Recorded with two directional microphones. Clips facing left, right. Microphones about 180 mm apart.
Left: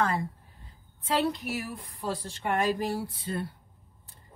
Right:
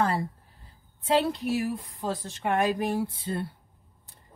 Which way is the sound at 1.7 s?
25° right (ahead or behind).